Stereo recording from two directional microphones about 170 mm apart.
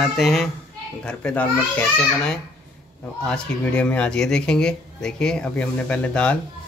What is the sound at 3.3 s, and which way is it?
Speech, 5° left (ahead or behind).